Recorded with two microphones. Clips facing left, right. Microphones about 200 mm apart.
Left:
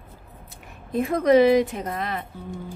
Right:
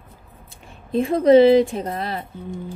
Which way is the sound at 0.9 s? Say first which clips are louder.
Right 4 dB; 30° right (ahead or behind).